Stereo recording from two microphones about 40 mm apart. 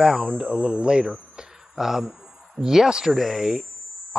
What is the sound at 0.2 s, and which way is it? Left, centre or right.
Speech, right.